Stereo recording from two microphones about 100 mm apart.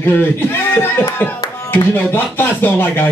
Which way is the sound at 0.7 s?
20° left (ahead or behind).